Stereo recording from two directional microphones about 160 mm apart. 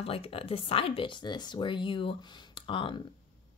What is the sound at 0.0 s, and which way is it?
A woman's voice, 35° left (ahead or behind).